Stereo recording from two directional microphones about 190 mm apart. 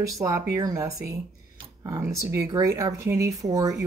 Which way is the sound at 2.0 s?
15° right (ahead or behind).